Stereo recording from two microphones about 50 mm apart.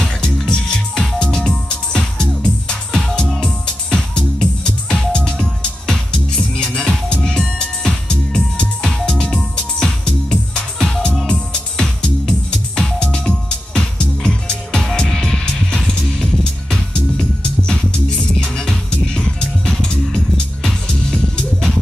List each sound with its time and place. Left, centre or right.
0.0 s music: centre
18.4 s music: centre